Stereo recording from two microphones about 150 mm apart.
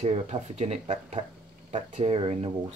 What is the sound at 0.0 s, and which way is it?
Speech, 45° right (ahead or behind).